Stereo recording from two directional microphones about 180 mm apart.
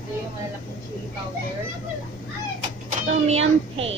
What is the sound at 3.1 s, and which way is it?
Speech, 35° right (ahead or behind).